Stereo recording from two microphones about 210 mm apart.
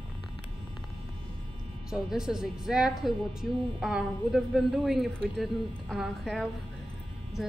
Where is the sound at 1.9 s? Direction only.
5° right (ahead or behind).